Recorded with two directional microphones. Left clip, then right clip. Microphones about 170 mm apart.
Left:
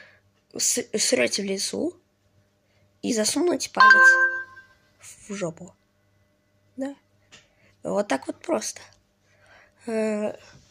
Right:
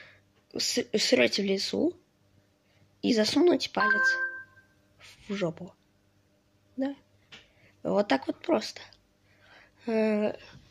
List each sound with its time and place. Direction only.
0.0 s speech: 5° left (ahead or behind)
3.0 s speech: 5° left (ahead or behind)
3.8 s speech: 55° left (ahead or behind)
4.9 s speech: 5° left (ahead or behind)
7.6 s speech: 5° left (ahead or behind)
9.4 s a sound: 5° left (ahead or behind)